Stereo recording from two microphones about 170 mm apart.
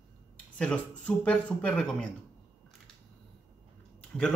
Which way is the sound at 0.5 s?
5° left (ahead or behind).